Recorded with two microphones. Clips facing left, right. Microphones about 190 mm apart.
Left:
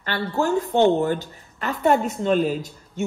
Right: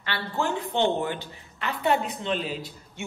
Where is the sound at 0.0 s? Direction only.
40° left (ahead or behind).